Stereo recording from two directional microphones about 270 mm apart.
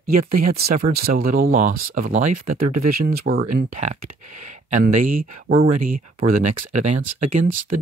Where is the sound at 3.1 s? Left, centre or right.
Right.